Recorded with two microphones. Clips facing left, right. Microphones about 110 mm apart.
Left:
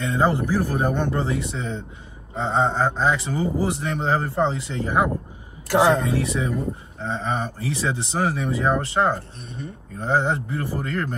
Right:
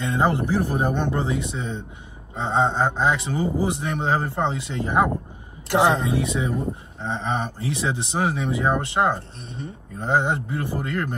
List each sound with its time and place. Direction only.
0.0 s speech: 20° right (ahead or behind)